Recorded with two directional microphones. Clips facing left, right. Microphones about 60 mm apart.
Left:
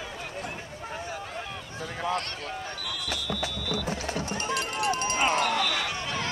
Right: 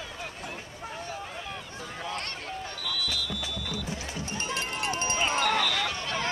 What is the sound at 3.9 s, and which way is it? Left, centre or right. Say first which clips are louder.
Music: left 5 dB; left.